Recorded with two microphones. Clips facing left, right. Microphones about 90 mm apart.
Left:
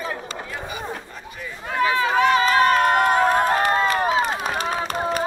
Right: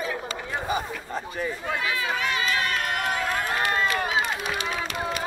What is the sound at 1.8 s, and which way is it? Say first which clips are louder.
Run: left 12 dB; 35° left (ahead or behind).